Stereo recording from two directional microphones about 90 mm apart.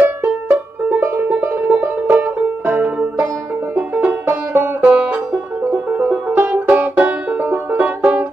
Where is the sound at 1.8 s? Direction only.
20° right (ahead or behind).